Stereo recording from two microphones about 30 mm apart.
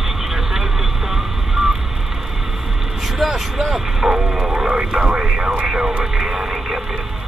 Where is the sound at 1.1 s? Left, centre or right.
Centre.